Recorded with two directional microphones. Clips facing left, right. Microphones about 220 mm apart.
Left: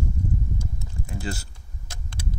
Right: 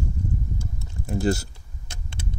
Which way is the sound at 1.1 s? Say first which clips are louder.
Right 10 dB; 40° right (ahead or behind).